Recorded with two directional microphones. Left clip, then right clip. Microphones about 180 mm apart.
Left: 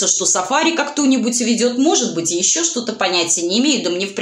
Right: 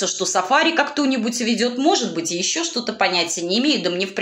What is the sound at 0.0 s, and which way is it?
Speech, 25° right (ahead or behind).